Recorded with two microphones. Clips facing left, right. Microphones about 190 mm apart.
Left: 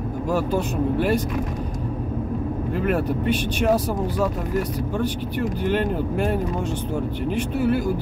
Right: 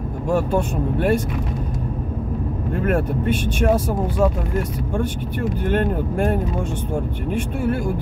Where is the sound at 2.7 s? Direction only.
50° right (ahead or behind).